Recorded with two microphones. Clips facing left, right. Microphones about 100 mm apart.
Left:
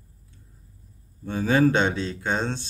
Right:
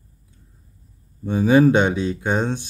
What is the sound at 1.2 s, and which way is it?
Speech, 15° right (ahead or behind).